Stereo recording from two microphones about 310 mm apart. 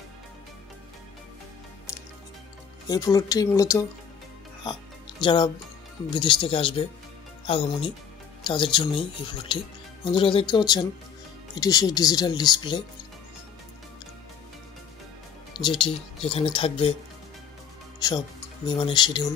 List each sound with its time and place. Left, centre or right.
2.9 s speech: centre
5.2 s speech: centre
15.5 s speech: centre
18.0 s speech: centre